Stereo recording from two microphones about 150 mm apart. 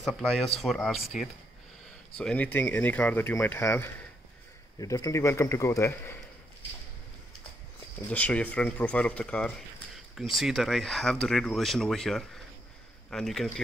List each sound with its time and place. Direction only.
0.0 s speech: centre (ahead or behind); by 6.1 s 20° left (ahead or behind)
8.1 s speech: 10° left (ahead or behind)